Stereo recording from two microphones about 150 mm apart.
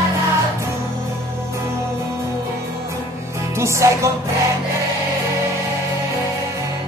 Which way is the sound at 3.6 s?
20° right (ahead or behind).